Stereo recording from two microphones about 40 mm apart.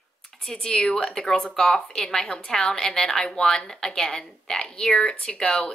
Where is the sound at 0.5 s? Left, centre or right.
Centre.